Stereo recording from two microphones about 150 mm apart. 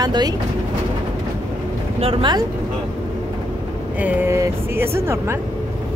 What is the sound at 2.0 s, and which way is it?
Speech, 35° right (ahead or behind).